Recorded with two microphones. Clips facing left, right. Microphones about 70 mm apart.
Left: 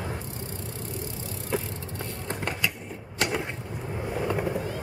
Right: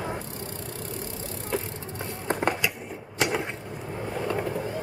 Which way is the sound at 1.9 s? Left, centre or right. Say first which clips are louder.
Right 6 dB; right.